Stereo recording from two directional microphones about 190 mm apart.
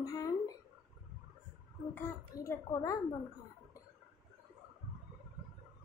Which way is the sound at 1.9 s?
15° left (ahead or behind).